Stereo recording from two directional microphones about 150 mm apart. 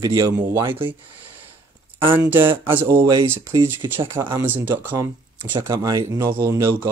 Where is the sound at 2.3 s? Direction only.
35° right (ahead or behind).